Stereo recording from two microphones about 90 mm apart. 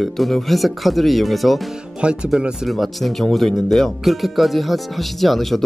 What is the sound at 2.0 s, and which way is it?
Speech, 10° right (ahead or behind).